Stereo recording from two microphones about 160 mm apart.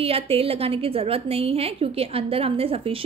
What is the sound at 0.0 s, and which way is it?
A woman's voice, 35° right (ahead or behind).